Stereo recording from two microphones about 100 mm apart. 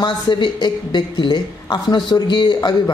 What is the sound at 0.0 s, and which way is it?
Speech, 50° left (ahead or behind).